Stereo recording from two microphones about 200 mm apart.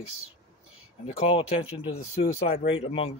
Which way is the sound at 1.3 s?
25° left (ahead or behind).